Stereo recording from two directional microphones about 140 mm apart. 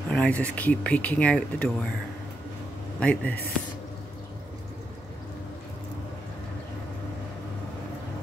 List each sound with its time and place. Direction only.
0.1 s speech: 10° left (ahead or behind)
3.0 s speech: 10° left (ahead or behind)